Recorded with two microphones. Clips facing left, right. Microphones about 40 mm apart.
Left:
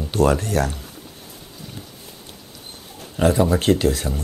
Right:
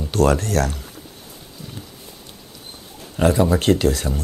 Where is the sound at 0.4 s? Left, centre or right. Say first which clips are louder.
Right 1 dB; left.